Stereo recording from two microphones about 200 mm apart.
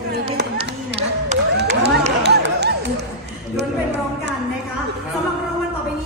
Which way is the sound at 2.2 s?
55° right (ahead or behind).